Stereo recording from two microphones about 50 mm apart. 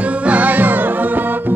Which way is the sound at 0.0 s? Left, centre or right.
Right.